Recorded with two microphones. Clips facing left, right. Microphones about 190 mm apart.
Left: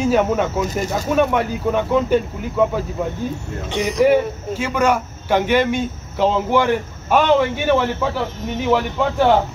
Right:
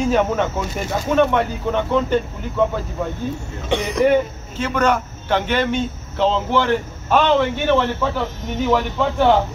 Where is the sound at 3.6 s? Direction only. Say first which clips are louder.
Right 1 dB; 55° right (ahead or behind).